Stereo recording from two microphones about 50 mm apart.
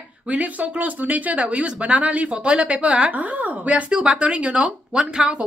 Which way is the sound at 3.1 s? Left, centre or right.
Right.